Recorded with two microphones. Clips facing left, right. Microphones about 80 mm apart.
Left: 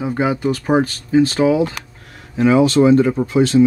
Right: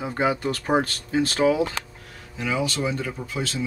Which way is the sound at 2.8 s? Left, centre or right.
Left.